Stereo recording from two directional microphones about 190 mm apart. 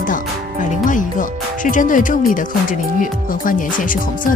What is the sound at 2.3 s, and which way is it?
Speech, 45° left (ahead or behind).